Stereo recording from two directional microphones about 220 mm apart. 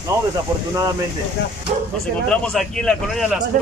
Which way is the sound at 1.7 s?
30° right (ahead or behind).